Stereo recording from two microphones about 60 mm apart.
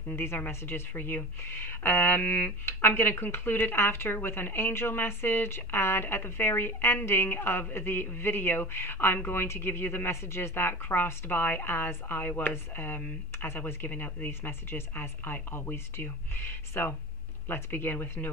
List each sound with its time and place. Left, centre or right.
0.1 s speech: left